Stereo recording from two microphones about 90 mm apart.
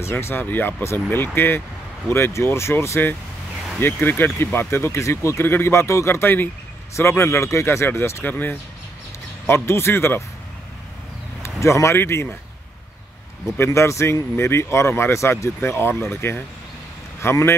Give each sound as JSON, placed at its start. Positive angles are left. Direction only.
{"t": 0.0, "sound": "speech", "side_deg": 25}
{"t": 11.4, "sound": "speech", "side_deg": 30}
{"t": 13.6, "sound": "speech", "side_deg": 30}